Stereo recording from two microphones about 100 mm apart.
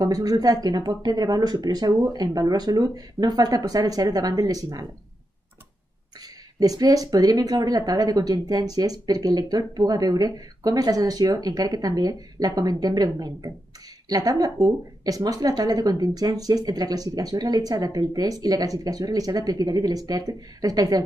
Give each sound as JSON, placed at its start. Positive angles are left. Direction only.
{"t": 0.0, "sound": "speech", "side_deg": -40}
{"t": 6.2, "sound": "speech", "side_deg": -40}